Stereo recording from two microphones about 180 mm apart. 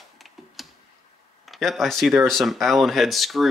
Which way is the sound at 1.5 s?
Centre (ahead or behind).